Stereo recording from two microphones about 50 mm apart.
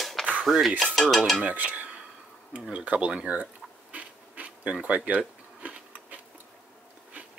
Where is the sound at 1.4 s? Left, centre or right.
Right.